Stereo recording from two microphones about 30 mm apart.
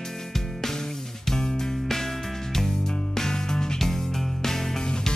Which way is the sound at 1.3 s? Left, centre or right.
Centre.